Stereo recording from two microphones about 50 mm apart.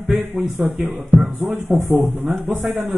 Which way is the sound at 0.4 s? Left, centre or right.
Centre.